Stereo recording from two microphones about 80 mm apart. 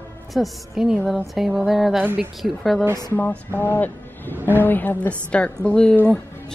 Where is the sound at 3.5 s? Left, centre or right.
Left.